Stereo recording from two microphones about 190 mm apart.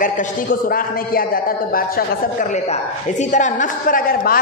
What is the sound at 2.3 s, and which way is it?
A woman's voice, 35° left (ahead or behind).